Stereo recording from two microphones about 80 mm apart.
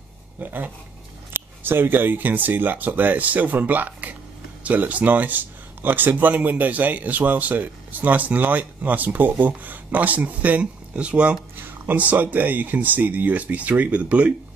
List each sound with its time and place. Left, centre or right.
0.4 s speech: right